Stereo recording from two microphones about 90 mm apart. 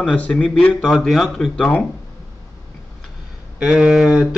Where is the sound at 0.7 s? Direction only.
Centre (ahead or behind).